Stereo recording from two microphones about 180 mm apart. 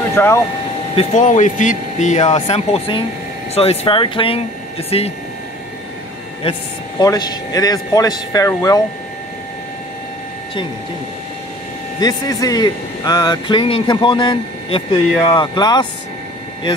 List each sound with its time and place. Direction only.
0.1 s speech: 15° left (ahead or behind)
0.9 s speech: 40° left (ahead or behind)
6.5 s speech: 35° left (ahead or behind)
7.0 s speech: 20° left (ahead or behind)
12.0 s speech: 20° left (ahead or behind)